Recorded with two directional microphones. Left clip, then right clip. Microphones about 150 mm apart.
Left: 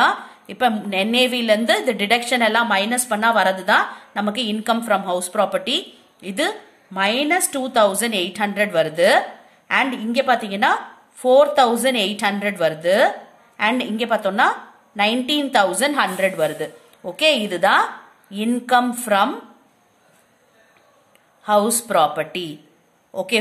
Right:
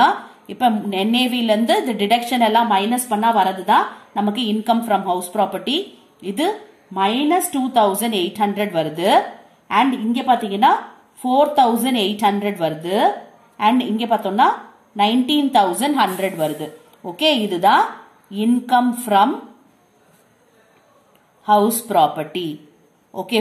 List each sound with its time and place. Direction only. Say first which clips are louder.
0.5 s a woman's voice: right 1 dB; 40° left (ahead or behind)
21.8 s a woman's voice: right 1 dB; 45° left (ahead or behind)